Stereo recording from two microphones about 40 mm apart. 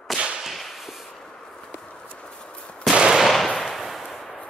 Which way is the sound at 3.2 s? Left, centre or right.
Centre.